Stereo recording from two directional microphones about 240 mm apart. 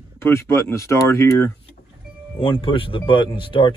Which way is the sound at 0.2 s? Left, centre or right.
Centre.